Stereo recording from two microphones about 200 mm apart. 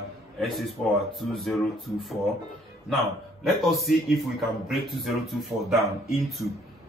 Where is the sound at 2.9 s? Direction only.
Centre (ahead or behind).